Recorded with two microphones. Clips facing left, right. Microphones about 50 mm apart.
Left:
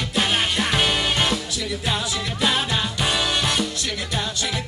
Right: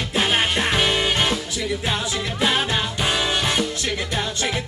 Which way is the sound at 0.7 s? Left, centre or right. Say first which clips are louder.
Right 1 dB; centre.